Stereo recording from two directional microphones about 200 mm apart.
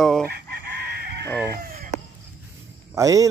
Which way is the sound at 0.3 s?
50° right (ahead or behind).